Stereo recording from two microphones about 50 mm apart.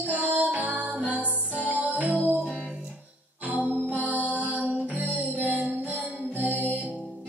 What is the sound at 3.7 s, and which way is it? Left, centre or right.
Music, right.